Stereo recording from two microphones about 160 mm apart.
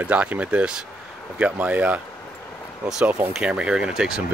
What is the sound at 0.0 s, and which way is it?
Speech, 10° right (ahead or behind).